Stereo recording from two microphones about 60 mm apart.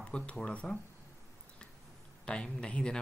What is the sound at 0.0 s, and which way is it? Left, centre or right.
Speech, centre.